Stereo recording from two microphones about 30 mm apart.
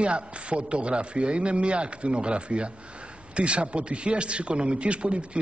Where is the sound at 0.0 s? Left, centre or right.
Right.